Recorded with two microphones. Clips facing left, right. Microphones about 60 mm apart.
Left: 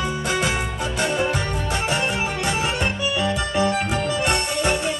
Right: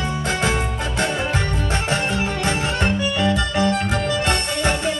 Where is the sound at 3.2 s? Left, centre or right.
Left.